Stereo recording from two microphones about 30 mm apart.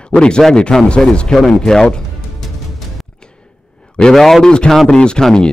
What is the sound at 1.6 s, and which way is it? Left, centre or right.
Speech, centre.